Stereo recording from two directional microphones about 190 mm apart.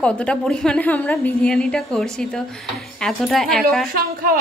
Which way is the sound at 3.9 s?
50° right (ahead or behind).